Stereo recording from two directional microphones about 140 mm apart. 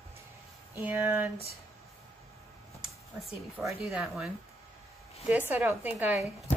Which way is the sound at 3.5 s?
5° right (ahead or behind).